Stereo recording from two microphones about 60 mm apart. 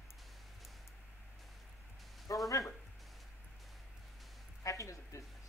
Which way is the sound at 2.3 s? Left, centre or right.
Left.